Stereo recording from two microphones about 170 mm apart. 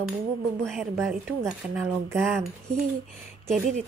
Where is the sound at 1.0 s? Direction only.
5° right (ahead or behind).